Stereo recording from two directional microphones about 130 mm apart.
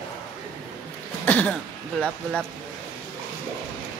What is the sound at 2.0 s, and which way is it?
Speech, 5° left (ahead or behind).